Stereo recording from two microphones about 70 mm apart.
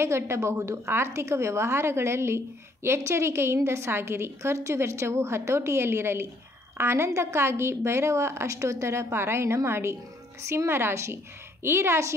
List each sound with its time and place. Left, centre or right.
0.0 s a woman's voice: right